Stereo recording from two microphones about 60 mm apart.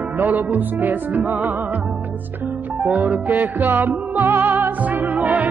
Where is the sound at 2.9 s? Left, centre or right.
Right.